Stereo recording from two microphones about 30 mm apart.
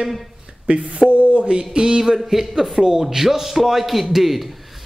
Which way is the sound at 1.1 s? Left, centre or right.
Right.